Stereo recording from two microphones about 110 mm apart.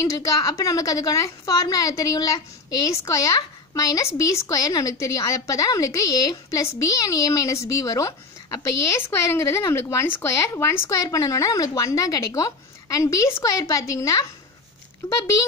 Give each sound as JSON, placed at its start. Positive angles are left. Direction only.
{"t": 0.0, "sound": "a woman's voice", "side_deg": 30}
{"t": 9.1, "sound": "a woman's voice", "side_deg": 25}